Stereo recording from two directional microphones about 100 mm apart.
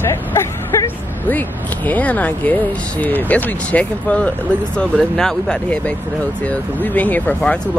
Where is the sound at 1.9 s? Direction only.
15° left (ahead or behind).